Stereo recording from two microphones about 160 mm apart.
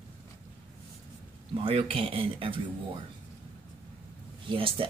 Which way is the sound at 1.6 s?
35° right (ahead or behind).